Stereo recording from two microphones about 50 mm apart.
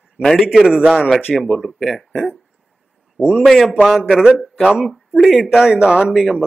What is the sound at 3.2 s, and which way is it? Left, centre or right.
Speech, centre.